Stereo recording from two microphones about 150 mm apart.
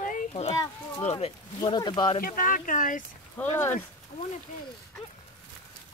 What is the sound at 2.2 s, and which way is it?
Speech, 65° left (ahead or behind).